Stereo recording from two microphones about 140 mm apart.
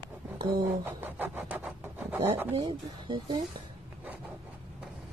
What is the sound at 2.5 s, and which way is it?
Speech, 40° right (ahead or behind).